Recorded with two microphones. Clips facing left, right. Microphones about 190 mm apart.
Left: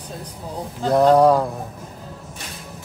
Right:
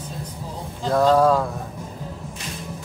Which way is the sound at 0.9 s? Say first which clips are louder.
Left 3 dB; 20° left (ahead or behind).